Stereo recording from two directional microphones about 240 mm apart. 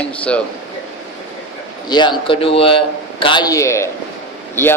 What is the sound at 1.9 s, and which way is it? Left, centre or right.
A man's voice, centre.